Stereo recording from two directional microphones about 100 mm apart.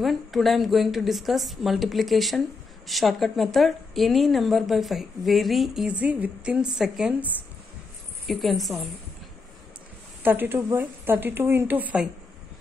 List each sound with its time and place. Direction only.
0.0 s a woman's voice: centre (ahead or behind)
5.9 s a woman's voice: 15° right (ahead or behind)
8.3 s a woman's voice: centre (ahead or behind)
10.2 s speech: 20° right (ahead or behind)